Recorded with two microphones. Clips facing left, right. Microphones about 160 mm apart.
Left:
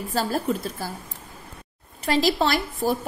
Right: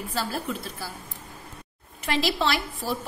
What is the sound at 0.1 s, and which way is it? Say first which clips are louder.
Speech: left 7 dB; 40° left (ahead or behind).